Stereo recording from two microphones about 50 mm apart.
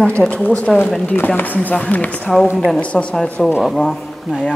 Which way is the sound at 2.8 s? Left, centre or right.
Left.